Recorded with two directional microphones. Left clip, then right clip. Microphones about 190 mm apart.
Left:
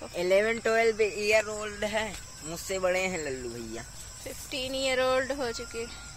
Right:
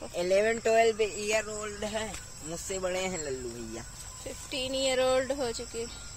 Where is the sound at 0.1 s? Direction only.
45° left (ahead or behind); by 3.8 s 30° left (ahead or behind).